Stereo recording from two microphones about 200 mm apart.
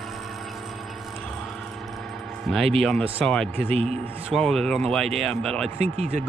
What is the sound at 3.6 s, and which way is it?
Speech, 30° right (ahead or behind).